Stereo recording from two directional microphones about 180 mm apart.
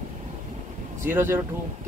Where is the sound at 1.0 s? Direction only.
15° right (ahead or behind).